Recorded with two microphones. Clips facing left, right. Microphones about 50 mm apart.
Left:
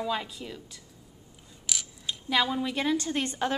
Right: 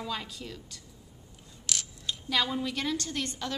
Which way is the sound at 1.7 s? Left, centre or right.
Centre.